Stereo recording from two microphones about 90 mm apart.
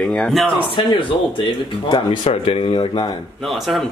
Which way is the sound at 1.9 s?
85° left.